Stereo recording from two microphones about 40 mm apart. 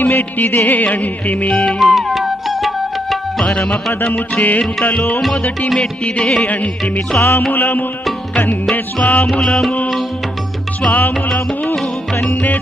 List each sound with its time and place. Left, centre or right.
0.0 s music: left
1.8 s music: centre
3.4 s music: left
4.4 s music: left
5.8 s music: left
6.4 s music: left
7.2 s music: left
7.5 s music: left
9.0 s music: left
10.9 s music: left
12.3 s music: left